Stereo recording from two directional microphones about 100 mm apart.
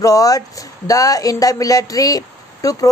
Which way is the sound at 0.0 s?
35° left (ahead or behind).